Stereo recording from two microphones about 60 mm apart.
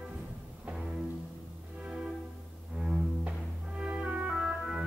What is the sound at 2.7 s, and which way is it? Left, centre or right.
Double bass, centre.